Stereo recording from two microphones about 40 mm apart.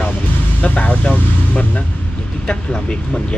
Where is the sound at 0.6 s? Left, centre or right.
Left.